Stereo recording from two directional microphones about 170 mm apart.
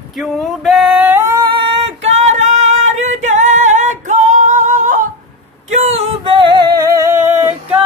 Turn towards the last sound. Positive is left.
turn(degrees=-10)  # may be behind; listen again after turning